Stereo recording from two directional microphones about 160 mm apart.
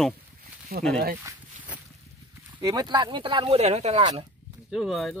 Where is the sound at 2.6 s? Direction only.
25° right (ahead or behind).